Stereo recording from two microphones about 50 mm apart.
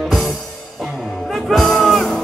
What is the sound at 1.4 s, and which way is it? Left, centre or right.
Music, centre.